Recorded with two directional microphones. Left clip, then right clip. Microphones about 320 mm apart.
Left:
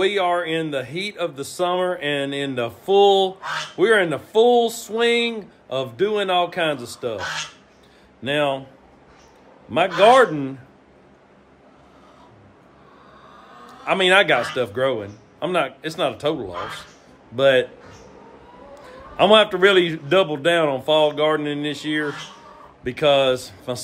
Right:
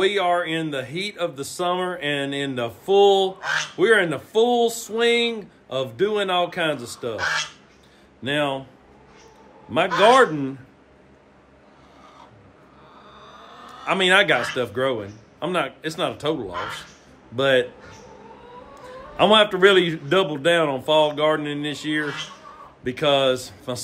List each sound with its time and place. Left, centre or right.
0.0 s speech: centre
3.3 s speech: right
3.7 s speech: centre
7.2 s speech: right
8.2 s speech: centre
9.9 s speech: centre
13.8 s speech: centre
18.8 s speech: centre